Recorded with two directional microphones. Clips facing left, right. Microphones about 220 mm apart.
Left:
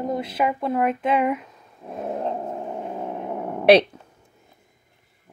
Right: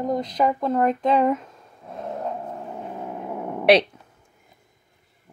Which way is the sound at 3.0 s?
20° left (ahead or behind).